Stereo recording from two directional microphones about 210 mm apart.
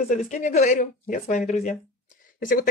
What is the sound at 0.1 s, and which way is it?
Speech, 35° left (ahead or behind).